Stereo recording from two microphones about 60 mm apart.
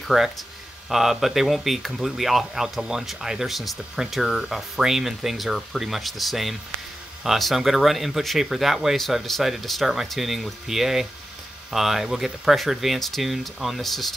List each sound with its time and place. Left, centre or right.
0.1 s speech: centre